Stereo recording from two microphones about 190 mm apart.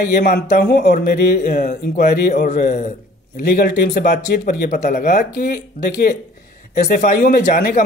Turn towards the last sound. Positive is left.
turn(degrees=45)  # may be behind; listen again after turning